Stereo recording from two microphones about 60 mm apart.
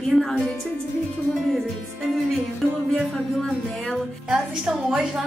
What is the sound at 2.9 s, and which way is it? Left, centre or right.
A woman's voice, centre.